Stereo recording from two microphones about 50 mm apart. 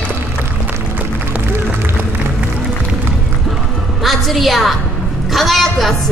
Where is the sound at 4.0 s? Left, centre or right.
Centre.